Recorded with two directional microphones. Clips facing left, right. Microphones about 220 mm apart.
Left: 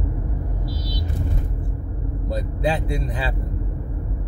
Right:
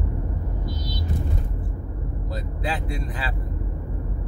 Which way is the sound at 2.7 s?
25° left (ahead or behind).